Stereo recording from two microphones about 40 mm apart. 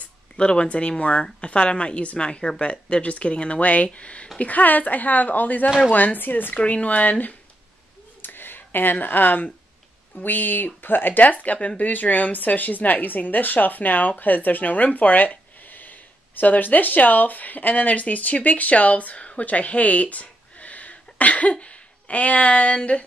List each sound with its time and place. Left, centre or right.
0.0 s a woman's voice: left
4.4 s speech: left
6.5 s a woman's voice: left
8.2 s a sound: left
9.0 s speech: left